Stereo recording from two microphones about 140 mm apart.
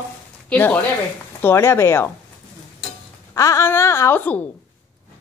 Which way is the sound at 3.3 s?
20° left (ahead or behind).